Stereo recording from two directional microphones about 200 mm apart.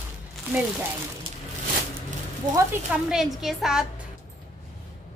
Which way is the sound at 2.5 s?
5° right (ahead or behind).